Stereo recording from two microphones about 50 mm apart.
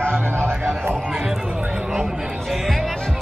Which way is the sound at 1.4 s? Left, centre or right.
Right.